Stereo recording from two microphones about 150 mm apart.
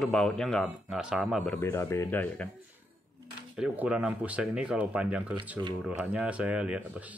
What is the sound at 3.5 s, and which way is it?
Speech, 5° right (ahead or behind).